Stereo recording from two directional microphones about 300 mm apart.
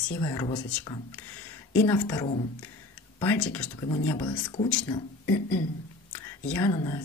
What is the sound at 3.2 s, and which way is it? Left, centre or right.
Speech, centre.